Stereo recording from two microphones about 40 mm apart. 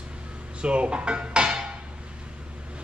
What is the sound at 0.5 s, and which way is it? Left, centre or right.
Dishes, right.